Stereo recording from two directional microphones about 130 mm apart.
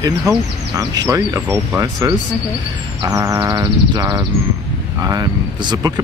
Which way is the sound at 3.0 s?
25° right (ahead or behind).